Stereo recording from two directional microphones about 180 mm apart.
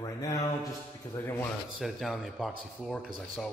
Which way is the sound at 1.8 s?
Centre (ahead or behind).